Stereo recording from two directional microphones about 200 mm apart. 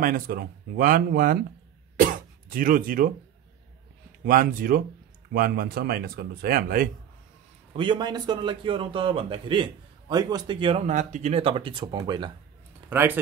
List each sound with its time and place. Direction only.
0.0 s speech: 45° right (ahead or behind)
2.5 s speech: 45° right (ahead or behind)
4.2 s speech: 45° right (ahead or behind)
7.7 s a man's voice: 25° right (ahead or behind)
10.9 s a man's voice: 40° right (ahead or behind); by 12.3 s 20° right (ahead or behind)
12.9 s speech: 10° right (ahead or behind)